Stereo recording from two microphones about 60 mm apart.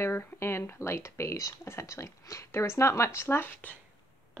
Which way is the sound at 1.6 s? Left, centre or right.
Left.